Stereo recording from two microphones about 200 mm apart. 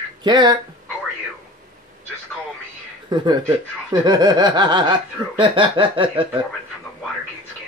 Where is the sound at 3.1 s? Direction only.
20° right (ahead or behind).